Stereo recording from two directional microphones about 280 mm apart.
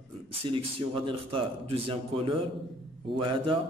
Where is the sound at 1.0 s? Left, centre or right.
Centre.